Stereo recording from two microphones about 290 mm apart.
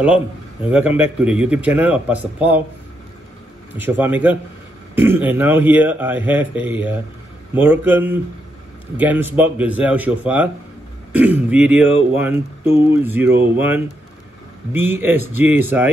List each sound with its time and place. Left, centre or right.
0.7 s a man's voice: centre
3.7 s a man's voice: centre